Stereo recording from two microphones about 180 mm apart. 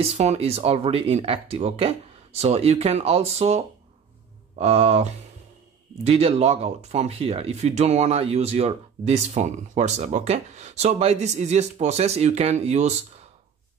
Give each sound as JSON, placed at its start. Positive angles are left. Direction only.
{"t": 0.0, "sound": "speech", "side_deg": -35}
{"t": 6.0, "sound": "speech", "side_deg": -35}